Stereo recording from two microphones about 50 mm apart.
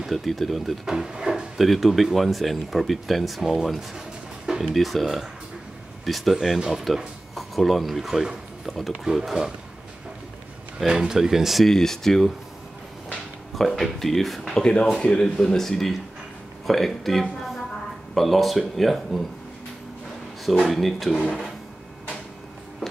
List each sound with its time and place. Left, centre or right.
0.0 s speech: centre
0.8 s drawer open or close: centre
1.6 s speech: centre
4.5 s music: centre
4.8 s speech: centre
10.8 s speech: centre
11.6 s speech: centre
13.6 s speech: centre
14.5 s speech: centre
20.7 s speech: centre
21.2 s speech: centre